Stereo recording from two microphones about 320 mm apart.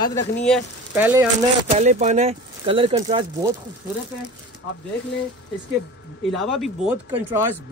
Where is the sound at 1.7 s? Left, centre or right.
Right.